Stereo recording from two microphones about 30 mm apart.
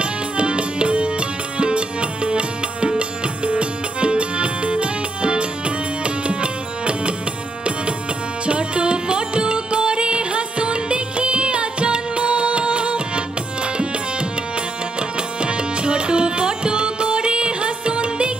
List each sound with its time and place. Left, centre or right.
0.0 s music: right
8.5 s music: right
15.0 s tabla: right